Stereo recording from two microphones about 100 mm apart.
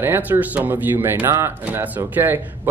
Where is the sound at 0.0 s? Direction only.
20° right (ahead or behind).